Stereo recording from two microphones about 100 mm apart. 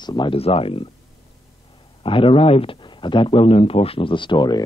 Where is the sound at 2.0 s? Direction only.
65° left (ahead or behind).